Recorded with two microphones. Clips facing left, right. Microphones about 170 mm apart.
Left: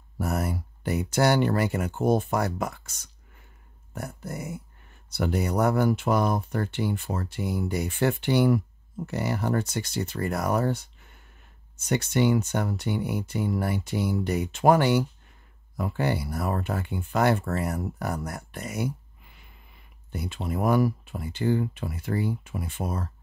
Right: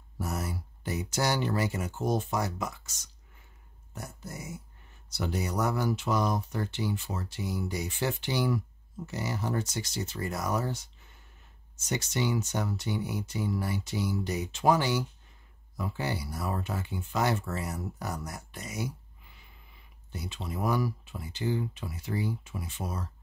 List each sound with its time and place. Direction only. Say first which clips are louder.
0.2 s speech: left 6 dB; 60° left (ahead or behind)